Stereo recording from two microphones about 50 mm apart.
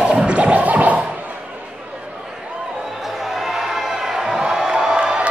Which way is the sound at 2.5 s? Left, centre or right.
Centre.